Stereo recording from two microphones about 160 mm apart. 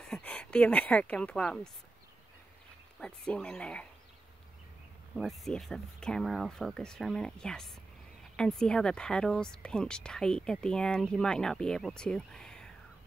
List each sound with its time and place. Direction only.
0.0 s speech: 5° left (ahead or behind)
3.0 s speech: 5° left (ahead or behind)
5.1 s a woman's voice: centre (ahead or behind)